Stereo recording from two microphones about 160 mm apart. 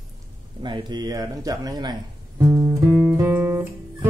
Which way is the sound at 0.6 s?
30° right (ahead or behind).